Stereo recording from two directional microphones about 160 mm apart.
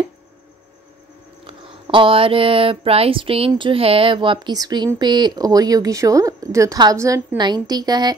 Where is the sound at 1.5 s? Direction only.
35° right (ahead or behind).